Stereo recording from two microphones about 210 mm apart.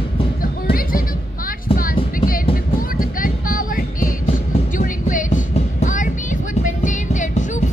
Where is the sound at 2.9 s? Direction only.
40° left (ahead or behind).